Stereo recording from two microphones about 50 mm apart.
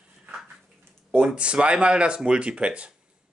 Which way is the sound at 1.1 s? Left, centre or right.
Right.